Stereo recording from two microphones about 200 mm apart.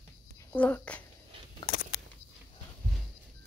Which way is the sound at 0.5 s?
5° left (ahead or behind).